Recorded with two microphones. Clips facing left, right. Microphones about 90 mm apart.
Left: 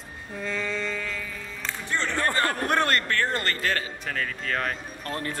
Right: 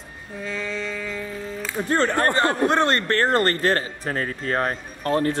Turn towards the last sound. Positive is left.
turn(degrees=-45)  # may be behind; listen again after turning